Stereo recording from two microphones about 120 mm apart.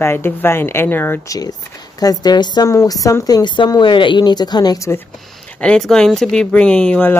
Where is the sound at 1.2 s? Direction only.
30° left (ahead or behind).